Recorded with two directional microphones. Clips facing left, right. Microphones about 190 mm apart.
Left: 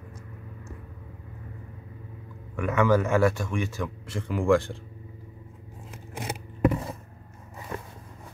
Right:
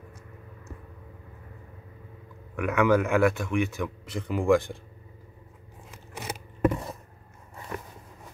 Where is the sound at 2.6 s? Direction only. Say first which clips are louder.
Even; 15° right (ahead or behind).